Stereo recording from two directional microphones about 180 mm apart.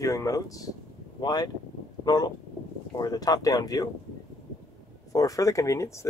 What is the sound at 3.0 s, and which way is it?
Speech, 20° left (ahead or behind).